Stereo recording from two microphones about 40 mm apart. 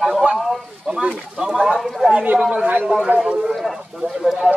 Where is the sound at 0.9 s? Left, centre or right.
Right.